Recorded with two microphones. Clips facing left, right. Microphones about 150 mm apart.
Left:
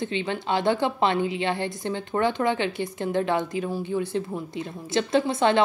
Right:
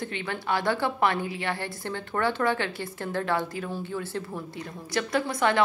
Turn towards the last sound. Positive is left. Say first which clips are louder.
# left 4 dB
turn(degrees=25)  # may be behind; listen again after turning